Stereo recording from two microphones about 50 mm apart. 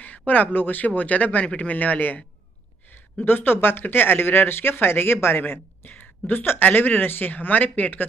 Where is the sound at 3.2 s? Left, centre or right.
Left.